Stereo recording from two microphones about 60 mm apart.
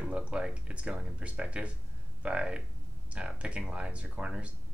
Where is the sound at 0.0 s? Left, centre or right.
Centre.